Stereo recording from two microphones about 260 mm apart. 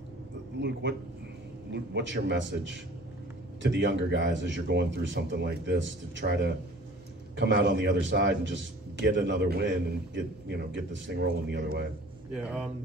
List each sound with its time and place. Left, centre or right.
0.6 s a man's voice: right
12.3 s speech: centre